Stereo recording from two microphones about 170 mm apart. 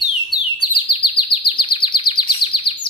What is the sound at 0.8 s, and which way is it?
Chirp, 30° left (ahead or behind).